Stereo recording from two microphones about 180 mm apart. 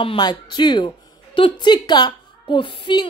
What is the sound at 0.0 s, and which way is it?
A woman's voice, 25° left (ahead or behind).